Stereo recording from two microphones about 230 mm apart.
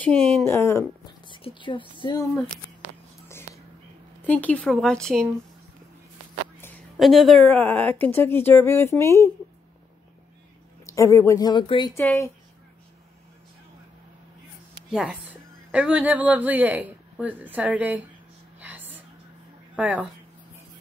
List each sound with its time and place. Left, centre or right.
0.5 s speech: centre
4.3 s speech: centre
7.0 s speech: centre
10.9 s speech: centre
11.9 s speech: centre
14.9 s speech: centre
19.7 s speech: centre